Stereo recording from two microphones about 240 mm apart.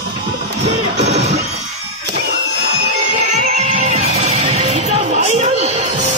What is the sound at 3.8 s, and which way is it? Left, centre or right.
Music, right.